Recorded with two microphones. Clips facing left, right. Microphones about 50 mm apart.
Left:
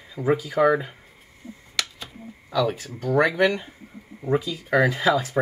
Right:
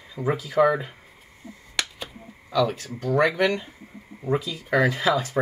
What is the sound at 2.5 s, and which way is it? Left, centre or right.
Speech, centre.